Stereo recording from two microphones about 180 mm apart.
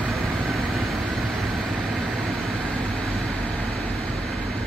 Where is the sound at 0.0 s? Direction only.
Centre (ahead or behind).